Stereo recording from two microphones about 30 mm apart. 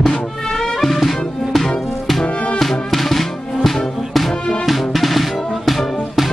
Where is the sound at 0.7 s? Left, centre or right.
Centre.